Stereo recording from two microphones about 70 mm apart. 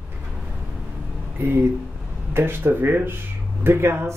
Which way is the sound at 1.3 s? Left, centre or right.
Right.